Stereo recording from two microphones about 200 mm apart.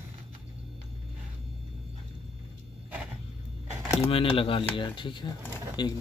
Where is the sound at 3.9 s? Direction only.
30° left (ahead or behind).